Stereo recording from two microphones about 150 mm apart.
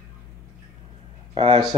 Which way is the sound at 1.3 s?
40° right (ahead or behind).